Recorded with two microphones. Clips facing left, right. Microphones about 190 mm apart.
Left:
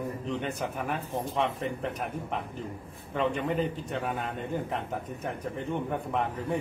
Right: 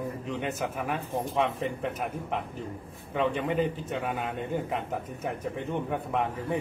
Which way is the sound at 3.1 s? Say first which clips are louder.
Right 1 dB; centre (ahead or behind).